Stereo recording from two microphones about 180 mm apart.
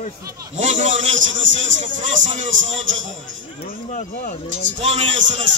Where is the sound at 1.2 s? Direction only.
90° right.